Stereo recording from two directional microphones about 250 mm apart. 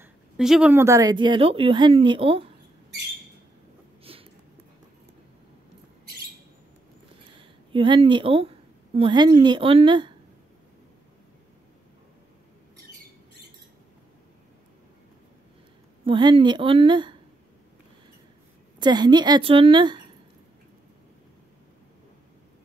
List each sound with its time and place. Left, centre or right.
0.0 s a woman's voice: centre; by 2.4 s right
4.0 s a sound: right
7.3 s a woman's voice: centre
16.1 s a woman's voice: centre
18.8 s a woman's voice: centre